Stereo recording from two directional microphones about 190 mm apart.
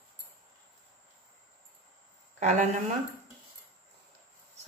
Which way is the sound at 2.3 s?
40° right (ahead or behind).